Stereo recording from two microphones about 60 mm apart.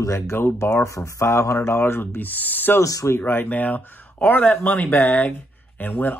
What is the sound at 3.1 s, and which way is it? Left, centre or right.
Speech, left.